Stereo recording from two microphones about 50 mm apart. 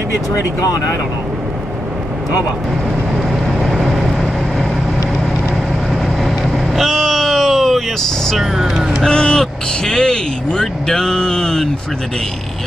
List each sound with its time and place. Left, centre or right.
3.2 s vehicle: centre
6.2 s vehicle: centre
8.3 s speech: centre
9.0 s speech: centre